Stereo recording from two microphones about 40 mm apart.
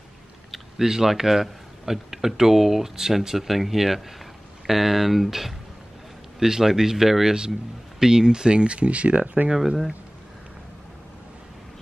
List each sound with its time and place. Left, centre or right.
0.5 s speech: centre; by 9.5 s right
9.5 s speech: centre